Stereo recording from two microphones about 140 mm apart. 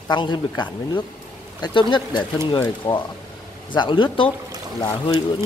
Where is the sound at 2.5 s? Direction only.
30° left (ahead or behind).